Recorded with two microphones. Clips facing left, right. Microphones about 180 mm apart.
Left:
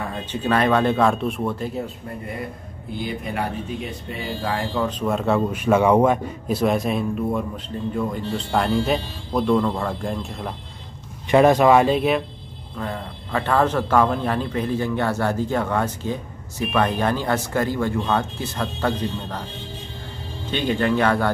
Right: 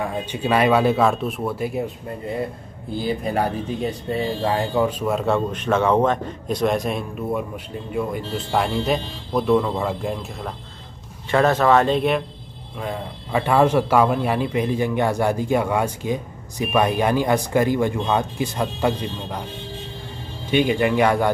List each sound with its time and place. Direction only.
0.2 s a man's voice: 10° right (ahead or behind)
3.0 s speech: 35° right (ahead or behind)
4.7 s a man's voice: 10° right (ahead or behind)
11.2 s speech: 15° left (ahead or behind)
12.7 s a man's voice: 10° right (ahead or behind)
20.4 s a man's voice: 10° right (ahead or behind)